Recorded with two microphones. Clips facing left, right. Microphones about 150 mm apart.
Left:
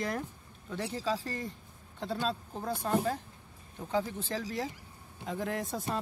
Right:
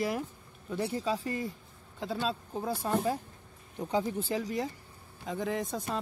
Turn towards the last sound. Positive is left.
turn(degrees=0)  # may be behind; listen again after turning